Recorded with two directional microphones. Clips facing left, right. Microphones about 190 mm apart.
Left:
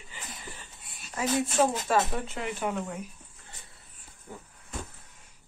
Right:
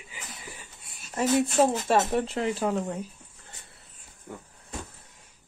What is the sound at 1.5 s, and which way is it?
Speech, 30° right (ahead or behind).